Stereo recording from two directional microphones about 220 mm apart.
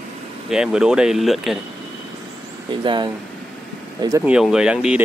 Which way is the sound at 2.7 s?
20° right (ahead or behind).